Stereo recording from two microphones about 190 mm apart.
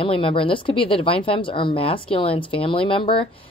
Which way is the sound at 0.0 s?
30° left (ahead or behind).